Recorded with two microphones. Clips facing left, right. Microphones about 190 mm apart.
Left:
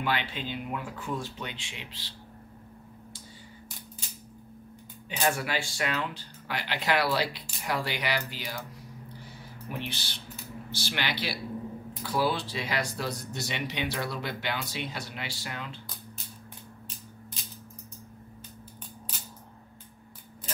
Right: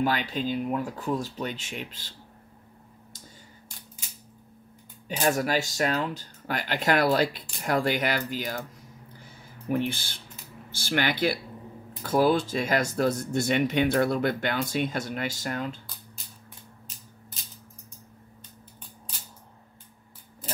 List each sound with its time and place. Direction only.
0.0 s speech: 40° right (ahead or behind)
5.0 s speech: 40° right (ahead or behind)
9.2 s a sound: 50° right (ahead or behind)
10.7 s speech: 50° right (ahead or behind)